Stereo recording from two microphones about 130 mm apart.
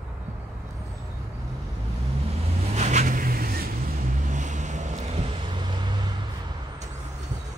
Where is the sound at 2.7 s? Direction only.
65° right (ahead or behind).